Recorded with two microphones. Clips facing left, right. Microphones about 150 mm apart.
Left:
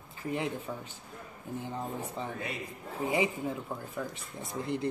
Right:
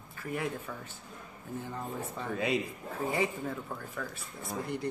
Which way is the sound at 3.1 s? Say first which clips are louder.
Left 2 dB; 15° left (ahead or behind).